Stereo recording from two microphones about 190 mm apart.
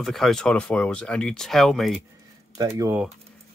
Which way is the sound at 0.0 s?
Centre (ahead or behind).